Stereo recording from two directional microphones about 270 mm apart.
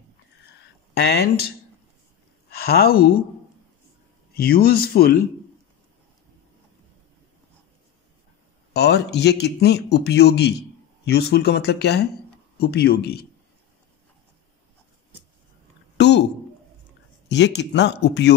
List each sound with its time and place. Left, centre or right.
0.9 s a man's voice: left
2.6 s a man's voice: left
4.3 s a man's voice: left
8.7 s a man's voice: left
16.0 s speech: left
17.3 s a man's voice: left